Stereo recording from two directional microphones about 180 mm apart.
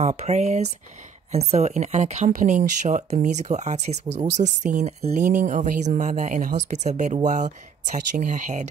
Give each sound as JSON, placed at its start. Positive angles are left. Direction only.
{"t": 0.0, "sound": "speech", "side_deg": -40}